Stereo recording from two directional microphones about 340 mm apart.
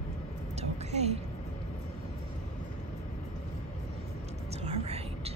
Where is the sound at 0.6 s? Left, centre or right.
Centre.